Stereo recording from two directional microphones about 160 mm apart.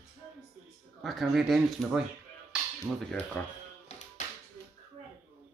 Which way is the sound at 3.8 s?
45° left (ahead or behind).